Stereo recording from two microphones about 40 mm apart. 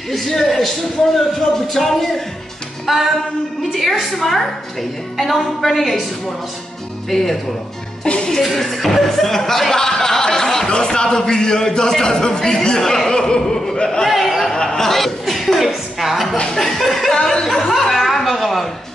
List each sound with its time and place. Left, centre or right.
0.1 s a woman's voice: centre
7.1 s speech: centre
8.0 s speech: left
8.5 s speech: centre
14.4 s a sound: centre
14.9 s a woman's voice: centre
17.1 s chuckle: centre